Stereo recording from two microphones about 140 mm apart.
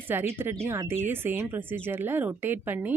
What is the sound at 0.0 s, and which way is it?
Speech, 15° right (ahead or behind).